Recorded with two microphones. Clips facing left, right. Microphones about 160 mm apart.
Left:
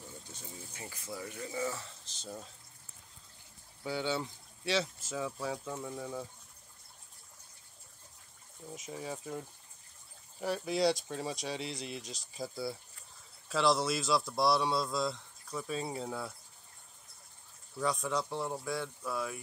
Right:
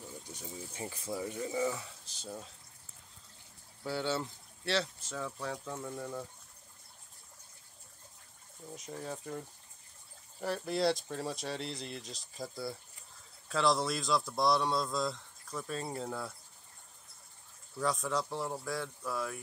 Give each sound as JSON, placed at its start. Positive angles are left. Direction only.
{"t": 0.7, "sound": "speech", "side_deg": -25}
{"t": 3.8, "sound": "speech", "side_deg": 0}
{"t": 8.6, "sound": "speech", "side_deg": 5}
{"t": 17.7, "sound": "speech", "side_deg": 0}